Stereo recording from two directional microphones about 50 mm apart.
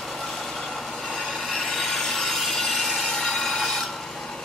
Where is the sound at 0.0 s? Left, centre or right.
Centre.